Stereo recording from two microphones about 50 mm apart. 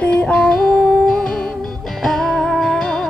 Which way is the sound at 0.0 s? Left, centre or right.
Left.